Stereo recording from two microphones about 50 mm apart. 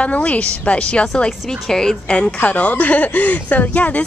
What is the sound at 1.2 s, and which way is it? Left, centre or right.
Speech, centre.